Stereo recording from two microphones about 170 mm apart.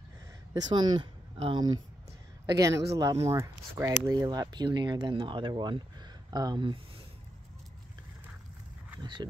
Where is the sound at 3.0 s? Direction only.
20° right (ahead or behind).